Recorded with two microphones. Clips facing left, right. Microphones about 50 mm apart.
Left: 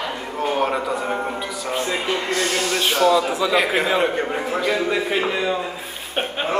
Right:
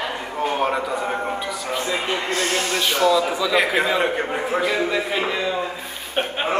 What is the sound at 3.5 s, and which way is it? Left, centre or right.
Speech, centre.